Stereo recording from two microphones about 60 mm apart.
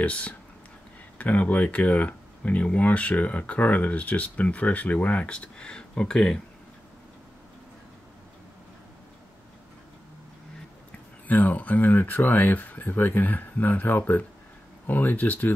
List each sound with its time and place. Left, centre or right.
0.0 s speech: left
11.2 s speech: left